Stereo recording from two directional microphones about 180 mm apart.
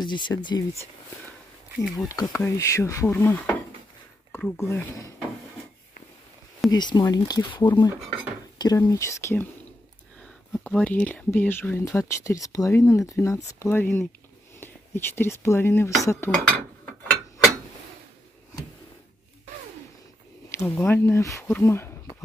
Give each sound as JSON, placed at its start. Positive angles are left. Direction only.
{"t": 0.0, "sound": "speech", "side_deg": 25}
{"t": 1.8, "sound": "speech", "side_deg": 20}
{"t": 6.7, "sound": "speech", "side_deg": 25}
{"t": 10.2, "sound": "speech", "side_deg": 0}
{"t": 20.5, "sound": "speech", "side_deg": 15}